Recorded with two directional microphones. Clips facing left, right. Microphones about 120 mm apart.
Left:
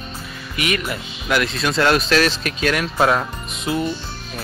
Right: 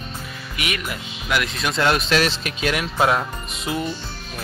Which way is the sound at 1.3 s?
15° right (ahead or behind).